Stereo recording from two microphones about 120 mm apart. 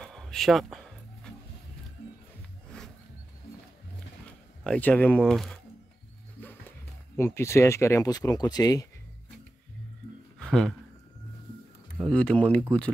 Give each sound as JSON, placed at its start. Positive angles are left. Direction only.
{"t": 0.0, "sound": "music", "side_deg": 5}
{"t": 2.7, "sound": "a sound", "side_deg": 5}
{"t": 4.6, "sound": "speech", "side_deg": 10}
{"t": 7.2, "sound": "speech", "side_deg": 20}
{"t": 10.4, "sound": "a sound", "side_deg": 5}
{"t": 12.0, "sound": "speech", "side_deg": 10}